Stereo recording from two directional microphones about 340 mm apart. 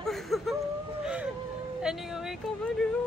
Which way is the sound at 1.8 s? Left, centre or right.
Centre.